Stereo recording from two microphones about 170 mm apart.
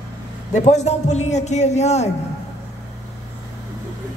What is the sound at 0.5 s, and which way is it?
A man's voice, 45° left (ahead or behind).